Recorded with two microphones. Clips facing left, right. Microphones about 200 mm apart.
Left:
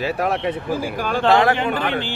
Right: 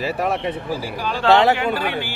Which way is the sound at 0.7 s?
50° left (ahead or behind).